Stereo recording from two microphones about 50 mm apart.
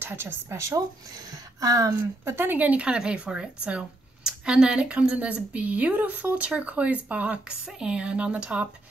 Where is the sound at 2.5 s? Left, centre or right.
Right.